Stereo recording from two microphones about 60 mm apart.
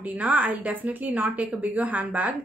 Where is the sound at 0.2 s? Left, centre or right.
Right.